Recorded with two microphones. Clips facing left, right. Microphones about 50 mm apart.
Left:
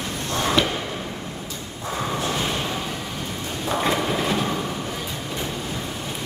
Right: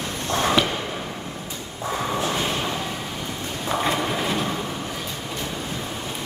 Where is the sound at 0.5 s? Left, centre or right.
Centre.